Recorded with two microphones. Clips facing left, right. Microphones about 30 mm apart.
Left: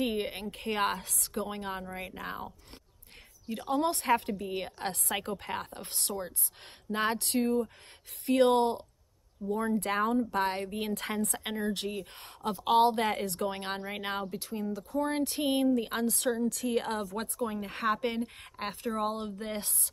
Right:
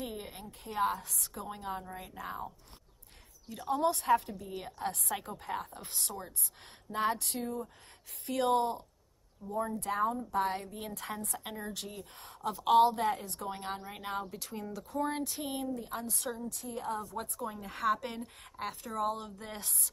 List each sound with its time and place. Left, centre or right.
0.0 s a woman's voice: left
2.2 s speech: left
3.5 s a woman's voice: left
7.2 s a woman's voice: left
9.5 s a woman's voice: left
12.2 s a sound: left
12.9 s a woman's voice: left
13.7 s speech: left
14.2 s speech: centre
15.2 s a woman's voice: left
16.4 s speech: left
17.4 s speech: left